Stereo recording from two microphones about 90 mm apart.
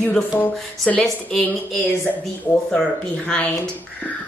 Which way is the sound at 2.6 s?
10° left (ahead or behind).